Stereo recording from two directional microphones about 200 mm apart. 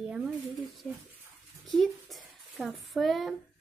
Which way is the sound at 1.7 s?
Centre (ahead or behind).